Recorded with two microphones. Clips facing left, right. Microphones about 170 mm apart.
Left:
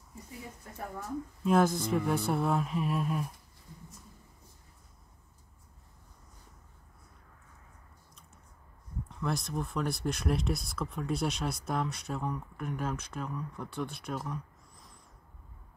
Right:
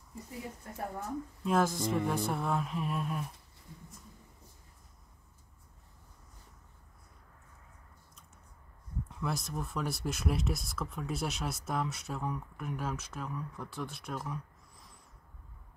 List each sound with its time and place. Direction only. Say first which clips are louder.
1.4 s speech: left 3 dB; centre (ahead or behind)
9.1 s speech: left 3 dB; 5° right (ahead or behind)